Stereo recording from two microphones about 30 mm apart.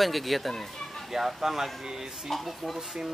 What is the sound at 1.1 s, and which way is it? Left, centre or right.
Speech, centre.